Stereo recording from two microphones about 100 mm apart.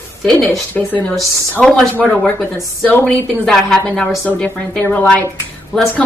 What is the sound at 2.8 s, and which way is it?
Speech, 15° left (ahead or behind).